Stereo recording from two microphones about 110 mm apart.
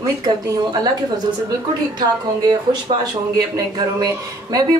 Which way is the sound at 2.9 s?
65° right (ahead or behind).